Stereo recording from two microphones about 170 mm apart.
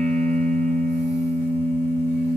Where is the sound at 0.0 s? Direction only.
45° right (ahead or behind).